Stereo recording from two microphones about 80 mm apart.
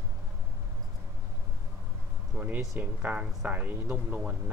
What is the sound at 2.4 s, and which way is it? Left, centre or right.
Speech, right.